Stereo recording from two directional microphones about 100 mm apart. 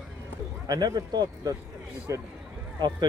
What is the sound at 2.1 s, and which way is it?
Speech, 30° right (ahead or behind).